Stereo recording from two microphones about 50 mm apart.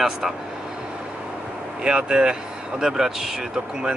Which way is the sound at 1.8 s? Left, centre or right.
Centre.